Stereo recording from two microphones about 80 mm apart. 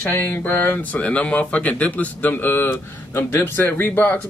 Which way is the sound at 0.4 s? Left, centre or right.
Left.